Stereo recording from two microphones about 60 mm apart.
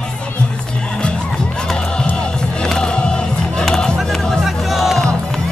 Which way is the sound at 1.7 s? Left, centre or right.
Centre.